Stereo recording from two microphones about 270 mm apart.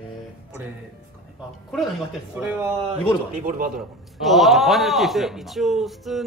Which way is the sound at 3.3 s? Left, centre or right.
Right.